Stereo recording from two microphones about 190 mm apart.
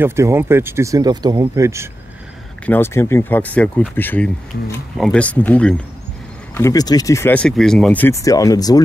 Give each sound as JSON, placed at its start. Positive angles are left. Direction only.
{"t": 0.0, "sound": "speech", "side_deg": -15}
{"t": 2.6, "sound": "speech", "side_deg": 10}